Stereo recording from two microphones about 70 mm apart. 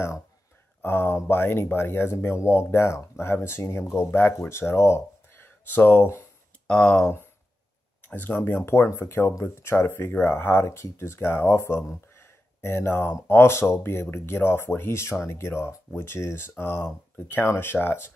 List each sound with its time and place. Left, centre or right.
0.8 s speech: left
6.7 s speech: centre
8.1 s speech: left